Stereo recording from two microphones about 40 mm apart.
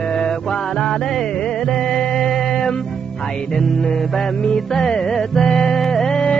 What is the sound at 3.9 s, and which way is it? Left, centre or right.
Music, centre.